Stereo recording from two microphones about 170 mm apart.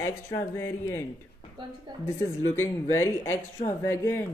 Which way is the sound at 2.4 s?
15° left (ahead or behind).